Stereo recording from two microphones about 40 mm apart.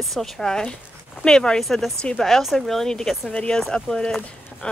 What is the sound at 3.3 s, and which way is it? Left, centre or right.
Speech, left.